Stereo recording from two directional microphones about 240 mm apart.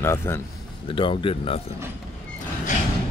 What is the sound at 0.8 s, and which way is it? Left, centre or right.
Speech, left.